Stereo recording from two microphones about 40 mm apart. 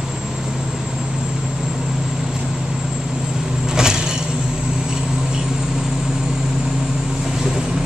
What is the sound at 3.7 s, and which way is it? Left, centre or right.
Vehicle, centre.